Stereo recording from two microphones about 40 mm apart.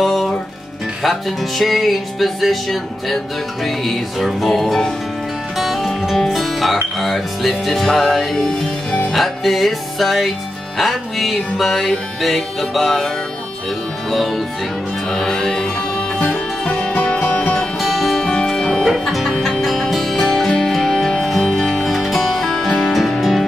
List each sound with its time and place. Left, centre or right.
0.0 s music: centre
1.6 s music: centre
9.1 s music: centre
14.1 s music: centre
16.2 s music: left
17.7 s music: centre
18.2 s music: left
18.9 s music: centre